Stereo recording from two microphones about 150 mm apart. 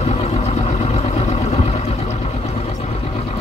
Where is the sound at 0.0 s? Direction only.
45° left (ahead or behind).